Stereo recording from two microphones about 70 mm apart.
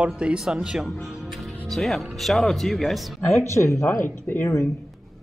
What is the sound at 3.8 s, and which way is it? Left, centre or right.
Speech, left.